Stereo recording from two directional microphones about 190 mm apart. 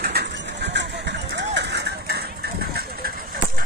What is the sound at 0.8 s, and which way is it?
Music, 65° right (ahead or behind).